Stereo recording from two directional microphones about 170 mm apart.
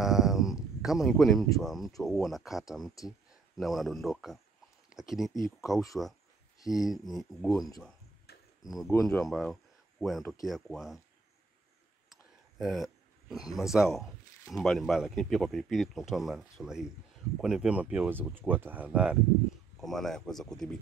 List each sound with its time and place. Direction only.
0.0 s a sound: centre (ahead or behind)
1.6 s speech: centre (ahead or behind)
8.3 s cricket: 70° left (ahead or behind)
8.6 s speech: centre (ahead or behind)
12.1 s speech: centre (ahead or behind)